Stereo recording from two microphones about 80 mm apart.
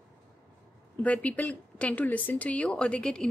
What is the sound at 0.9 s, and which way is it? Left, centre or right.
A woman's voice, centre.